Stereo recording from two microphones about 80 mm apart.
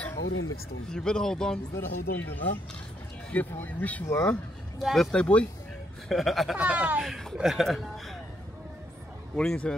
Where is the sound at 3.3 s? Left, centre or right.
Left.